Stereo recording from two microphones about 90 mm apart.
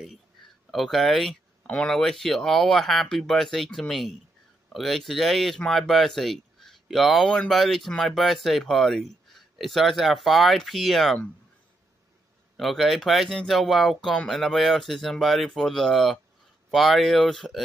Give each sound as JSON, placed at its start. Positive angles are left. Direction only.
{"t": 0.7, "sound": "speech", "side_deg": 0}
{"t": 1.6, "sound": "speech", "side_deg": 10}
{"t": 12.5, "sound": "speech", "side_deg": 0}